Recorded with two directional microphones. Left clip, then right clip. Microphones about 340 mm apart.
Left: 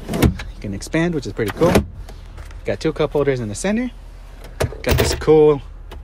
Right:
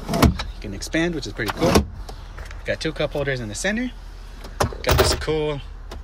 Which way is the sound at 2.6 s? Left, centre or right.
Centre.